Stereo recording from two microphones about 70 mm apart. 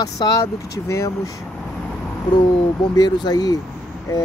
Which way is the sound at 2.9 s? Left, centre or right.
Left.